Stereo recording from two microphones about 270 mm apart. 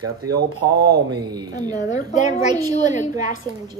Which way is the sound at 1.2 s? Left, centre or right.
Centre.